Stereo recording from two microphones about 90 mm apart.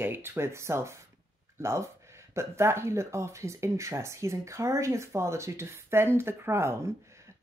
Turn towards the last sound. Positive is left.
turn(degrees=-30)  # may be behind; listen again after turning